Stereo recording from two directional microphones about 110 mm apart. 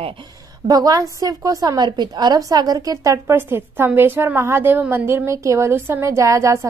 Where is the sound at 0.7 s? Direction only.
35° right (ahead or behind).